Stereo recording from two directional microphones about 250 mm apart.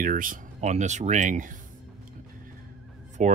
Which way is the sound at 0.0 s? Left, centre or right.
Right.